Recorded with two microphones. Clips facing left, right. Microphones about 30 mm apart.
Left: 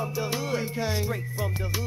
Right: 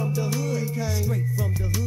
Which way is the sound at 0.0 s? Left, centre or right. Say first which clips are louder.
Right 2 dB; left.